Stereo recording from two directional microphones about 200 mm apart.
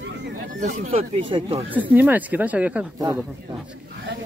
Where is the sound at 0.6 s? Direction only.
30° right (ahead or behind).